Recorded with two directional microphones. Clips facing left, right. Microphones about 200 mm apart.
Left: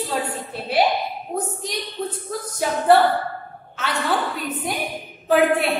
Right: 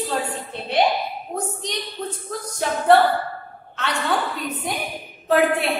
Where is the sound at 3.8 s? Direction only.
Centre (ahead or behind).